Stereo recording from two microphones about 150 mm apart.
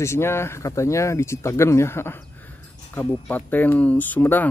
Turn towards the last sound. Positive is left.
turn(degrees=10)  # may be behind; listen again after turning